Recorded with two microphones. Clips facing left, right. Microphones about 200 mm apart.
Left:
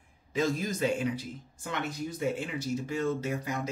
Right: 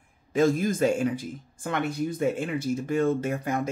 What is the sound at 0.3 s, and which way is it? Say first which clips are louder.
Speech: right 7 dB; 50° right (ahead or behind).